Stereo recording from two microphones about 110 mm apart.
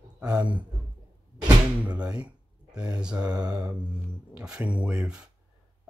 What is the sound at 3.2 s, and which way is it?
Speech, 35° right (ahead or behind).